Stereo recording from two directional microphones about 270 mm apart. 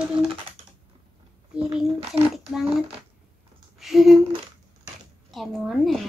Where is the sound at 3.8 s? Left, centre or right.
Centre.